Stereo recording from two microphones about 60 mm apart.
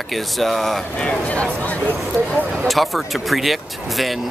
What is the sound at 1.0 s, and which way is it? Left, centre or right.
Speech, left.